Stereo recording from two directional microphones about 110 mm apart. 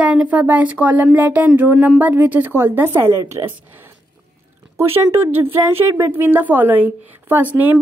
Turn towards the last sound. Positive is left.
turn(degrees=-15)  # may be behind; listen again after turning